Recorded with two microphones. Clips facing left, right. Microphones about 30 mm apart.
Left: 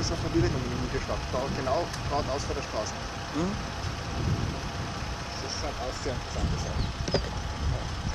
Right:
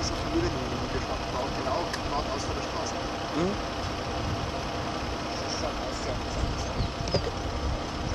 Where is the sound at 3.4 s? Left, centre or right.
Centre.